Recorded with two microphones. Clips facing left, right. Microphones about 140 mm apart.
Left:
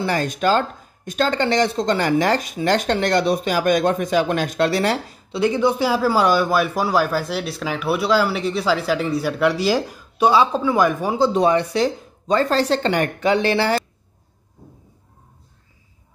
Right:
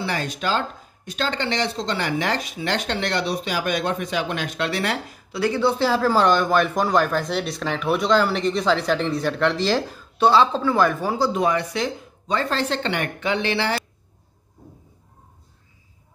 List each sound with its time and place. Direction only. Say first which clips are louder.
0.0 s speech: left 6 dB; 45° left (ahead or behind)
5.3 s speech: left 3 dB; 20° left (ahead or behind)
11.3 s speech: left 5 dB; 30° left (ahead or behind)